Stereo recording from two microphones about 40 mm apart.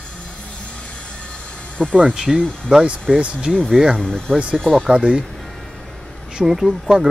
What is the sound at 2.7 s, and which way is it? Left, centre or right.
Speech, right.